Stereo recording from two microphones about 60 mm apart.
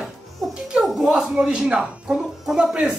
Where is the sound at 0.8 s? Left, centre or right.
Centre.